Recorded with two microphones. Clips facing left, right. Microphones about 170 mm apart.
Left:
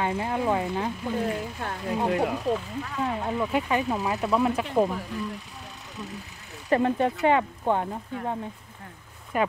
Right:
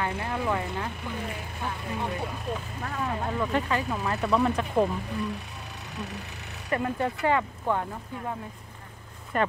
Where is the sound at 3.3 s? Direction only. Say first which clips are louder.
Left 2 dB; 10° left (ahead or behind).